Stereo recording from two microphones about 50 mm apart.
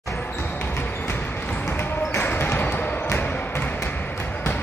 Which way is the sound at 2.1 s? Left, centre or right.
Left.